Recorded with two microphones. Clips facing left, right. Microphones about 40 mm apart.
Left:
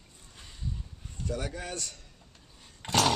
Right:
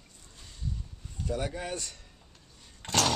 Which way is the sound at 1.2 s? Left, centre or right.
Centre.